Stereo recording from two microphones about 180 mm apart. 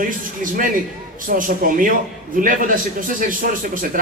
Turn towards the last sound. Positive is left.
turn(degrees=-50)  # may be behind; listen again after turning